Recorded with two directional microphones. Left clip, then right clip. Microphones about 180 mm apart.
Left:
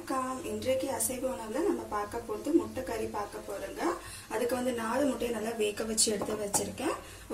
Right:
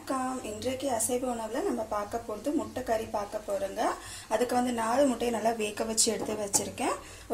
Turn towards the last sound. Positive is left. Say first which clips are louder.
# right 2 dB
turn(degrees=-20)  # may be behind; listen again after turning